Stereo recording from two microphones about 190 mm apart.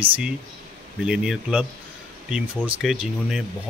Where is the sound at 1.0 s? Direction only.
5° right (ahead or behind).